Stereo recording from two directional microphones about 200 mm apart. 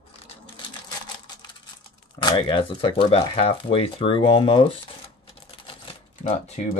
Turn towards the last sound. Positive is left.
turn(degrees=35)  # may be behind; listen again after turning